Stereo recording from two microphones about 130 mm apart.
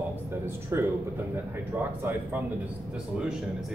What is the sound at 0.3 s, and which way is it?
Speech, 20° right (ahead or behind).